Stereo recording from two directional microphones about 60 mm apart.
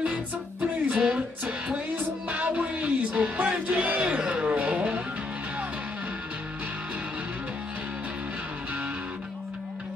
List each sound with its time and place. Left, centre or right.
0.0 s music: right